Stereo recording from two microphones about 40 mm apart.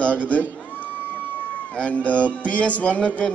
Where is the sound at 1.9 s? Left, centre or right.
Left.